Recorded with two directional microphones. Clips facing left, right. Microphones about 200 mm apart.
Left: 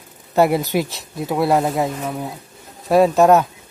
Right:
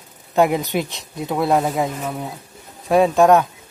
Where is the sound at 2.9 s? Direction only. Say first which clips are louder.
Left 1 dB; 5° left (ahead or behind).